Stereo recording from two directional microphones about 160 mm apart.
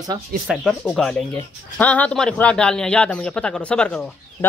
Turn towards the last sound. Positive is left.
turn(degrees=5)  # may be behind; listen again after turning